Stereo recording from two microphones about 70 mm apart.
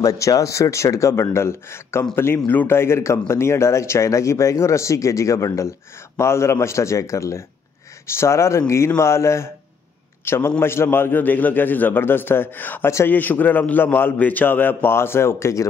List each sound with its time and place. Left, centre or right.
0.0 s a man's voice: left